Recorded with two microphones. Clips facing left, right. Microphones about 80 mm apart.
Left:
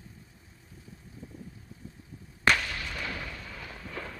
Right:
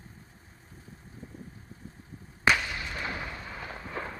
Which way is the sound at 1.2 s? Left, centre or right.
Right.